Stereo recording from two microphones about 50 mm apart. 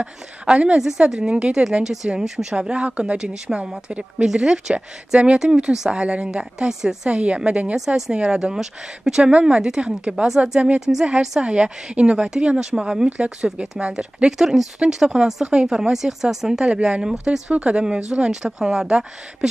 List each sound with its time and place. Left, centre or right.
0.0 s a woman's voice: right
2.6 s a woman's voice: right
7.1 s a woman's voice: right
7.7 s a woman's voice: centre